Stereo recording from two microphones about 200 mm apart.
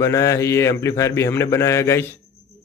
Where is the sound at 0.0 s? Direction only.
15° left (ahead or behind).